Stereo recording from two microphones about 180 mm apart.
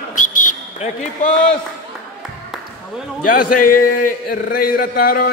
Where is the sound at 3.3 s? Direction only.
50° left (ahead or behind).